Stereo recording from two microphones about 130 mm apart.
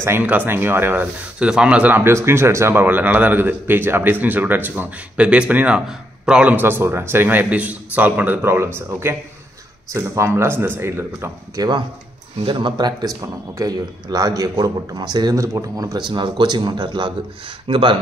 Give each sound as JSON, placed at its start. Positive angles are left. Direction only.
{"t": 0.0, "sound": "a man's voice", "side_deg": -15}
{"t": 12.4, "sound": "a man's voice", "side_deg": -35}